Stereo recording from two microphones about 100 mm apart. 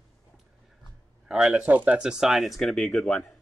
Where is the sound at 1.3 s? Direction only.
5° right (ahead or behind).